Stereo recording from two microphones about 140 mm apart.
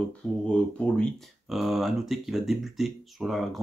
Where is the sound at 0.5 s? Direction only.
5° left (ahead or behind).